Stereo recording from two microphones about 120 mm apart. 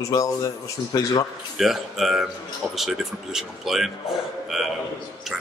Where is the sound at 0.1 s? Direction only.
30° left (ahead or behind).